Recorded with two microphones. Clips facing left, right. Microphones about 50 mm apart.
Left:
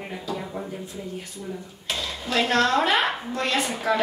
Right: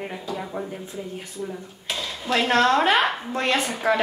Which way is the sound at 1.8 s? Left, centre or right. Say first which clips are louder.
Even; centre.